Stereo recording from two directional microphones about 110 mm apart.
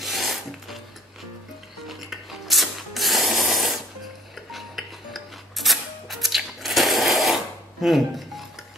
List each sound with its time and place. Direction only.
0.0 s filing: centre (ahead or behind)
1.9 s music: centre (ahead or behind)
7.8 s dishes: centre (ahead or behind)